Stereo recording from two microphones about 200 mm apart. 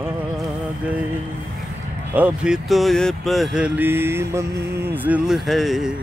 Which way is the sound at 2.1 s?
5° right (ahead or behind).